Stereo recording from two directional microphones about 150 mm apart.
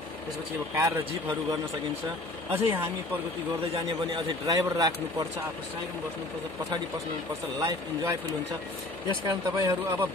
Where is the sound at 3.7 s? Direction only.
40° right (ahead or behind).